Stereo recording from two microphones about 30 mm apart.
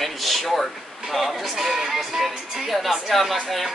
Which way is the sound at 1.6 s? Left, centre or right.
Centre.